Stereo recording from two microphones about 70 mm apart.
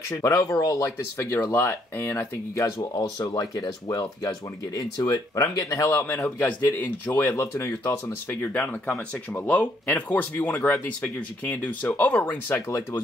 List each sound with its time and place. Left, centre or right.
0.4 s speech: left
1.1 s speech: left
2.6 s speech: left
7.1 s speech: left
12.5 s speech: left